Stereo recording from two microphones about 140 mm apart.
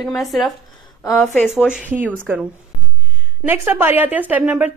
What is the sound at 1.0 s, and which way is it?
Speech, 20° left (ahead or behind).